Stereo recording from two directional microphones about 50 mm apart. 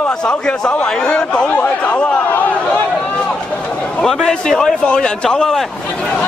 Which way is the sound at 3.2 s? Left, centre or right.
Centre.